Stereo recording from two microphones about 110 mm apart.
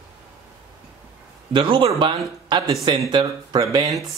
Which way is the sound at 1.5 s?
55° right (ahead or behind).